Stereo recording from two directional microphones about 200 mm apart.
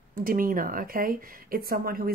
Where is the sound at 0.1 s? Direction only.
45° right (ahead or behind).